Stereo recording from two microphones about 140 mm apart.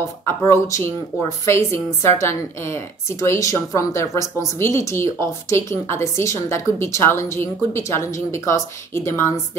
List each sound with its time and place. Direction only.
0.2 s a woman's voice: 20° left (ahead or behind)